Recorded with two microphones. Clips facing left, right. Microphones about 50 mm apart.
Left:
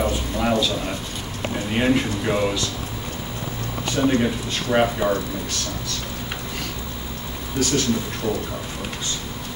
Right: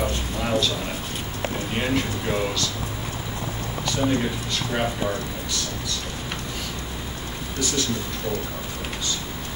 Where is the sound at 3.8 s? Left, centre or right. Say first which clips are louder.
Left 4 dB; left.